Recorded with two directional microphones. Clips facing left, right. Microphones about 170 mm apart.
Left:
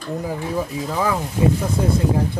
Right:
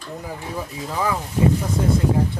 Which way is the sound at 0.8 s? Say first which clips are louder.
Even; 10° left (ahead or behind).